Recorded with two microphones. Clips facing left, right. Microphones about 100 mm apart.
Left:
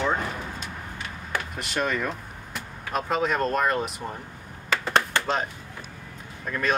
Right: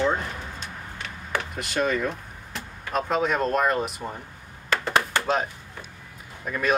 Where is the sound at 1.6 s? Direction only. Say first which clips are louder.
Right 2 dB; centre (ahead or behind).